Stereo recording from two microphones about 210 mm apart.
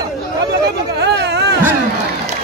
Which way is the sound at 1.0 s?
50° right (ahead or behind).